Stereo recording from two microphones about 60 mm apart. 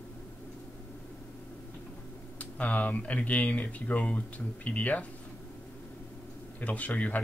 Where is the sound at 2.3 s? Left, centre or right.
Left.